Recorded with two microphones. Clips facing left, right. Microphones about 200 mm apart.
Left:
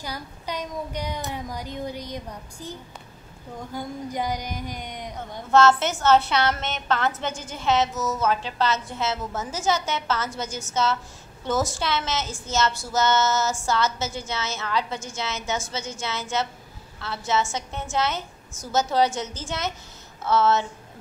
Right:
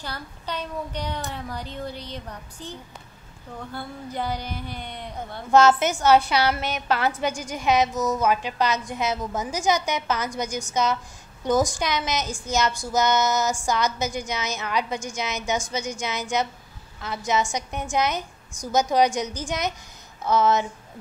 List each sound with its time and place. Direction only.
0.0 s a child's voice: 10° left (ahead or behind)
5.5 s a woman's voice: 15° right (ahead or behind)